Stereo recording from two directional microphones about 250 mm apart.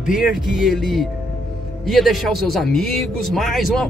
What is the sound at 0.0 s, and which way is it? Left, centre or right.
Speech, centre.